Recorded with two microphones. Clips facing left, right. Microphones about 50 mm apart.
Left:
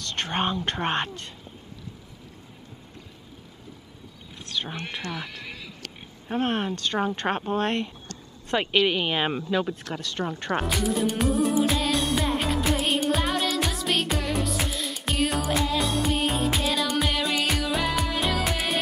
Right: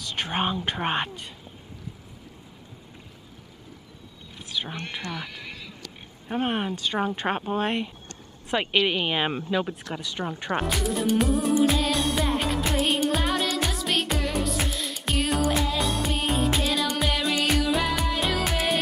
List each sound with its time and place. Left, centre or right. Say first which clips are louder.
0.0 s speech: even; centre
4.4 s a sound: even; centre
5.1 s horse: even; centre
6.2 s speech: left 1 dB; centre
10.6 s music: left 2 dB; centre